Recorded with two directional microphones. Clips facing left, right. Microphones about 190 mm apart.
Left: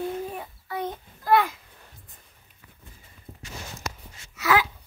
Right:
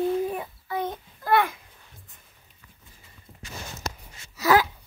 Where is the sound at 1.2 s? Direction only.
55° right (ahead or behind).